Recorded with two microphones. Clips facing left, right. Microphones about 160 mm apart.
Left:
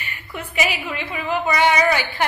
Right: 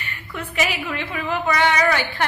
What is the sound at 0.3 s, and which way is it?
A woman's voice, 10° left (ahead or behind).